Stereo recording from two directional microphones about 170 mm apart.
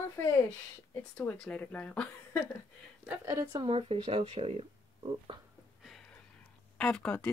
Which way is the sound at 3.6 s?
30° right (ahead or behind).